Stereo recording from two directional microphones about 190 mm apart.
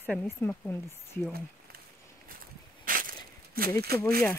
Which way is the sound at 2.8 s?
50° right (ahead or behind).